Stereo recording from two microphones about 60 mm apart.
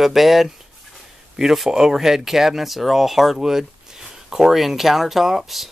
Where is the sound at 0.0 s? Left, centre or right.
Centre.